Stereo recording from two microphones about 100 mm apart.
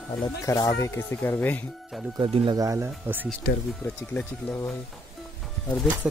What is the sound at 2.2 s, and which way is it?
Speech, 60° right (ahead or behind).